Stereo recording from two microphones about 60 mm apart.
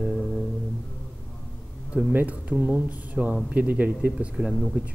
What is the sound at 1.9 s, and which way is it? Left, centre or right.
Speech, right.